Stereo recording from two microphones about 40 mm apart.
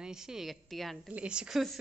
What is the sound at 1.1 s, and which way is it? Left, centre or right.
Speech, right.